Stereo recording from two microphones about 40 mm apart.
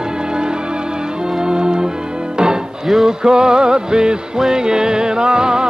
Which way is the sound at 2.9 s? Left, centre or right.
Centre.